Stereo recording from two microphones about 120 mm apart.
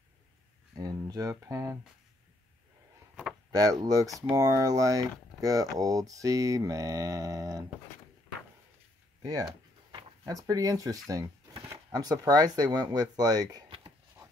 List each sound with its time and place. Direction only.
0.7 s speech: 30° right (ahead or behind)
3.5 s speech: 30° right (ahead or behind)
9.2 s speech: 35° right (ahead or behind)